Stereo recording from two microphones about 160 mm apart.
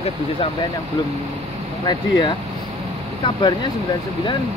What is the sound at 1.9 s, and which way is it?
Speech, 25° left (ahead or behind).